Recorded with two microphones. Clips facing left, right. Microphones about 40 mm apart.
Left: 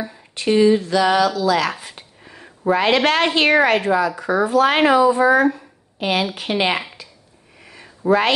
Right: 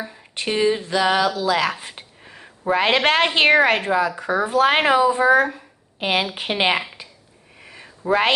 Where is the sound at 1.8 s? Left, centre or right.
Right.